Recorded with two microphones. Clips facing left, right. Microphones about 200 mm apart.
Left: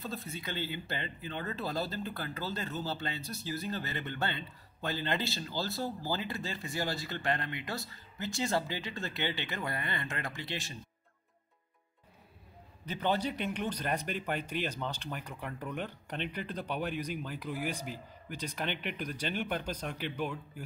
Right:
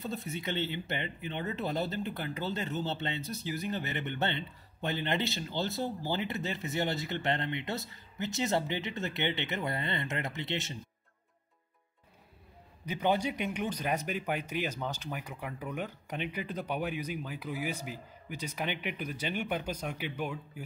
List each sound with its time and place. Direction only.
0.0 s speech: 20° right (ahead or behind)
12.8 s a man's voice: 10° right (ahead or behind)